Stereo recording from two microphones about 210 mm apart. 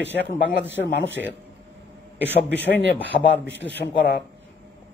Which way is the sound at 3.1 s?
35° left (ahead or behind).